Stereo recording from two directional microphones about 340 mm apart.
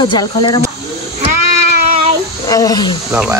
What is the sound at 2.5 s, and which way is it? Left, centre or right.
Speech, centre.